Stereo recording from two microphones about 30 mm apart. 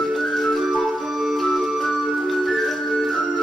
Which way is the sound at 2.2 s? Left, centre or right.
Centre.